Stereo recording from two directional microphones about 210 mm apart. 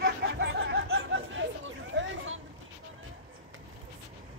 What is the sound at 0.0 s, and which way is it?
Chatter, 55° right (ahead or behind).